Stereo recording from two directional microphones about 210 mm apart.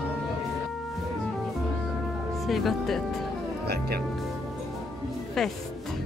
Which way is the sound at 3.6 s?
50° right (ahead or behind).